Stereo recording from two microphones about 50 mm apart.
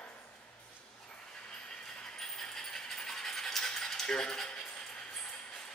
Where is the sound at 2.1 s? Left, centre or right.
Centre.